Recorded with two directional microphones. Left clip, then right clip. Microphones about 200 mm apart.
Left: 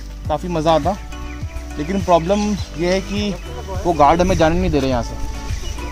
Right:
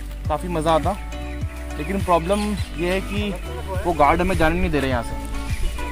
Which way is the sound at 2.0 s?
25° left (ahead or behind).